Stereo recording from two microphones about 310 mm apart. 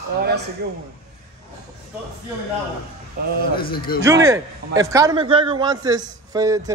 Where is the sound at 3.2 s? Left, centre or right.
Right.